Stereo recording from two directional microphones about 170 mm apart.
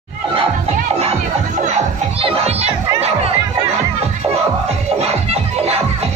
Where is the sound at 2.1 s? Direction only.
35° right (ahead or behind).